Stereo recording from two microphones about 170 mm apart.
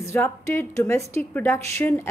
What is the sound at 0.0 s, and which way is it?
A woman's voice, 15° left (ahead or behind).